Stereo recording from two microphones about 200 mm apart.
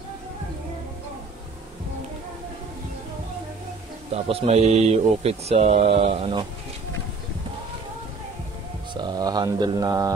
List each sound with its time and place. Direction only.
4.1 s speech: 30° right (ahead or behind)
8.9 s speech: 20° right (ahead or behind)